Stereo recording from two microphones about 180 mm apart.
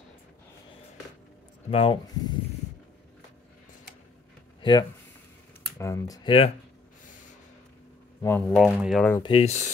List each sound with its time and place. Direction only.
1.7 s speech: 30° left (ahead or behind)
4.6 s a sound: 25° left (ahead or behind)
5.8 s speech: 15° left (ahead or behind)
8.2 s speech: 15° left (ahead or behind)
8.5 s speech: centre (ahead or behind)
9.2 s speech: 30° left (ahead or behind)